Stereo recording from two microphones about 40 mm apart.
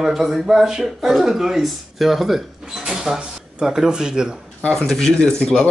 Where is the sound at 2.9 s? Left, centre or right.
Centre.